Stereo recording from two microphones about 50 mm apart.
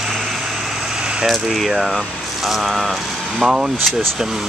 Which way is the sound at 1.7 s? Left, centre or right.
Centre.